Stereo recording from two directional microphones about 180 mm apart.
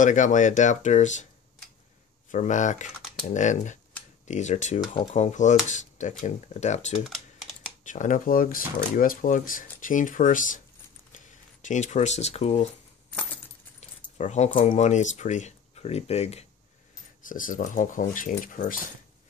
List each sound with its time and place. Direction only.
0.0 s speech: 45° left (ahead or behind)
2.3 s speech: 45° left (ahead or behind)
14.1 s speech: 40° left (ahead or behind)
17.3 s speech: 50° left (ahead or behind)